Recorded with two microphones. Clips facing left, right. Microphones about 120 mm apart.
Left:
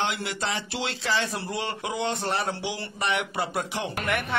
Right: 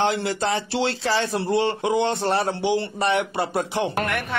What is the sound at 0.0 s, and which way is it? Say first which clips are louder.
Speech: right 7 dB; 35° right (ahead or behind).